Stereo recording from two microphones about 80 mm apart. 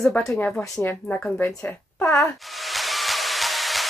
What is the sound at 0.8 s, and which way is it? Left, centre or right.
Speech, left.